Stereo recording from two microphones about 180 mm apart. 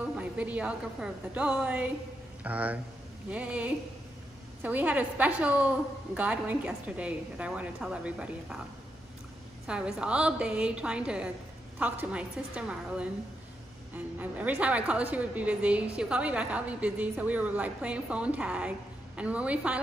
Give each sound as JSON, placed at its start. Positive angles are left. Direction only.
{"t": 0.0, "sound": "a woman's voice", "side_deg": -5}
{"t": 9.7, "sound": "a woman's voice", "side_deg": -5}